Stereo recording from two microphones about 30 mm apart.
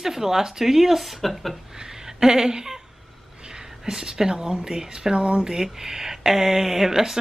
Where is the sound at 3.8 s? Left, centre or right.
Centre.